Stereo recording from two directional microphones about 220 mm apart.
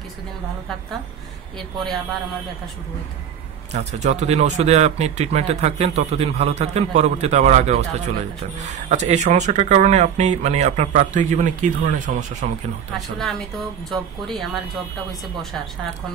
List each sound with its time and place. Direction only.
3.7 s speech: 30° right (ahead or behind)
12.9 s speech: centre (ahead or behind)